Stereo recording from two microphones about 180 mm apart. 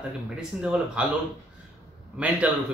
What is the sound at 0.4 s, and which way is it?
Speech, 5° right (ahead or behind).